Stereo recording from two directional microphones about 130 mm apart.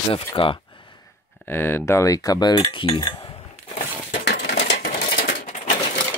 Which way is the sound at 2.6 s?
45° left (ahead or behind).